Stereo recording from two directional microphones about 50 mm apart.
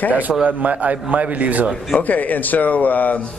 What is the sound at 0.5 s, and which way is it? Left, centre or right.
A man's voice, right.